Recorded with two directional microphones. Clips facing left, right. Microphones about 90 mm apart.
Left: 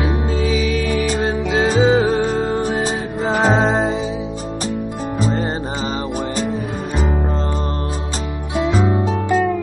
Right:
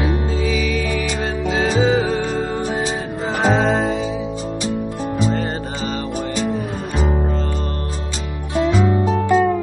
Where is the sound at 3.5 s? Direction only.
20° left (ahead or behind).